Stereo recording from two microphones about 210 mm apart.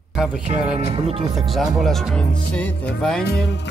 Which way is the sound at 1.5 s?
Centre (ahead or behind).